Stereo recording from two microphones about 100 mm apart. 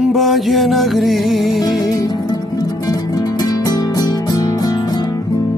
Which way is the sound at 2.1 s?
40° left (ahead or behind).